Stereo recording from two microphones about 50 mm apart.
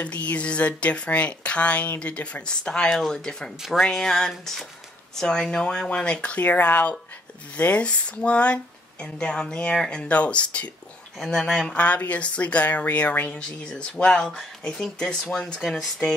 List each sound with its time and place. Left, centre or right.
0.0 s speech: left
11.1 s speech: centre
11.7 s speech: left
13.4 s speech: centre